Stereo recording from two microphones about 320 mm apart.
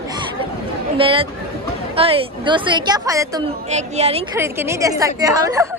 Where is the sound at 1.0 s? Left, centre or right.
Centre.